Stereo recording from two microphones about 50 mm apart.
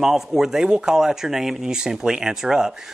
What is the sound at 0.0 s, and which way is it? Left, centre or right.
Speech, centre.